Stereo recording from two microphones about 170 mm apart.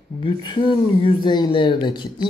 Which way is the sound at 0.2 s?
30° left (ahead or behind).